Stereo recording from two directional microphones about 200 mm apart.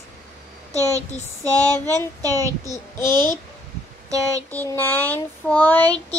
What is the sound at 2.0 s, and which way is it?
Speech, 15° left (ahead or behind).